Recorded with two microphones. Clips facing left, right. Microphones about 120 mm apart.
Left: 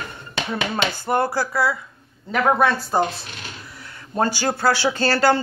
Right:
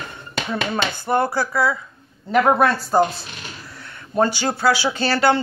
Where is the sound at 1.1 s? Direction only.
20° left (ahead or behind).